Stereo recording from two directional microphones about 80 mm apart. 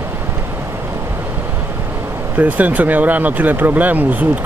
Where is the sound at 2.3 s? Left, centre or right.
Centre.